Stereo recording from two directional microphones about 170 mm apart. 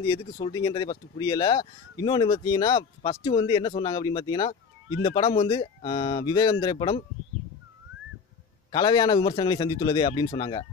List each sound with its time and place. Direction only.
0.1 s speech: 25° left (ahead or behind)
8.7 s speech: 25° left (ahead or behind)